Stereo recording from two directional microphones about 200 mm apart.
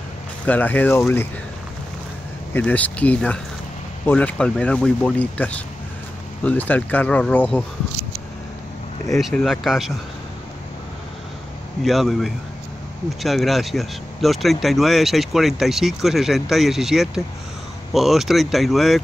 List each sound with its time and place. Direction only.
0.5 s speech: 10° left (ahead or behind)
2.5 s speech: 5° left (ahead or behind)
9.2 s speech: centre (ahead or behind)
11.8 s speech: centre (ahead or behind)